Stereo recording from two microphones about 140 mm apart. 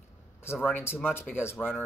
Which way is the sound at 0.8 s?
15° left (ahead or behind).